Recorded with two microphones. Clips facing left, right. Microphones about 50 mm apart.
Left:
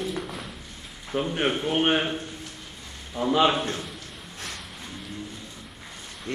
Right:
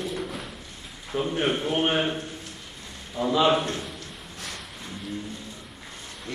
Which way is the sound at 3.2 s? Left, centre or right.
Left.